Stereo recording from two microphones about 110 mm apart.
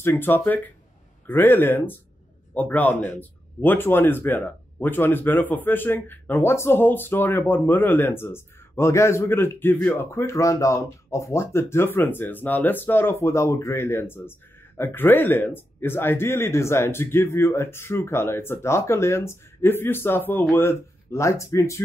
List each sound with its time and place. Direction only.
0.0 s speech: 20° left (ahead or behind)